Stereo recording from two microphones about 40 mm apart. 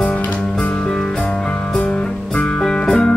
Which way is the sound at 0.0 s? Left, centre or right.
Left.